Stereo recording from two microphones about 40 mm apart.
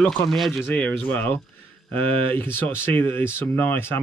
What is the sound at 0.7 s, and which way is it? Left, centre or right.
Speech, left.